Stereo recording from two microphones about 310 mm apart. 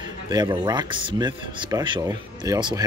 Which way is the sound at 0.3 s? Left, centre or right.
Centre.